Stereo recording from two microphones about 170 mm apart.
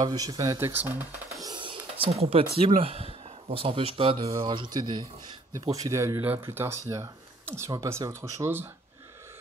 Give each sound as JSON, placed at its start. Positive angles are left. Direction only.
{"t": 0.0, "sound": "speech", "side_deg": -25}
{"t": 1.4, "sound": "a sound", "side_deg": -30}
{"t": 2.8, "sound": "speech", "side_deg": -35}